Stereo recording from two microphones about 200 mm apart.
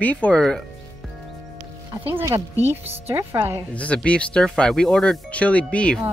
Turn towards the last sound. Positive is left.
turn(degrees=5)  # may be behind; listen again after turning